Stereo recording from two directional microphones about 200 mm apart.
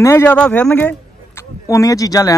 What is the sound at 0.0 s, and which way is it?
A man's voice, 10° left (ahead or behind).